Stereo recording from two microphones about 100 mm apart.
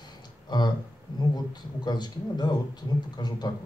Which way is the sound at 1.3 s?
45° left (ahead or behind).